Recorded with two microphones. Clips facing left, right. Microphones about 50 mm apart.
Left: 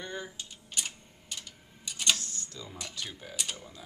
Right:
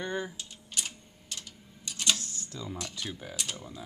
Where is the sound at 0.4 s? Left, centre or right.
Centre.